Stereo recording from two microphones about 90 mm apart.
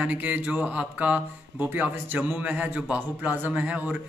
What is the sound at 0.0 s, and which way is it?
Speech, 15° right (ahead or behind).